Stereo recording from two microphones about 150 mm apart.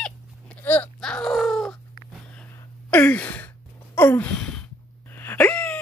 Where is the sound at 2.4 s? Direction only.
10° left (ahead or behind).